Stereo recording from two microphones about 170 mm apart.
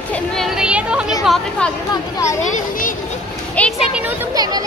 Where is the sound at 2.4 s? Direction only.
50° left (ahead or behind).